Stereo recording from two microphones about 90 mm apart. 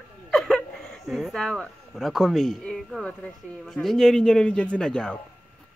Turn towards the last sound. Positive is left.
turn(degrees=10)  # may be behind; listen again after turning